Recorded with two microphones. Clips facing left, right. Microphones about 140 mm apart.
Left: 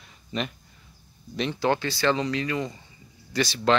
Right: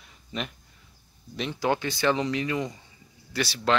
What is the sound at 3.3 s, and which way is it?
Speech, 5° right (ahead or behind).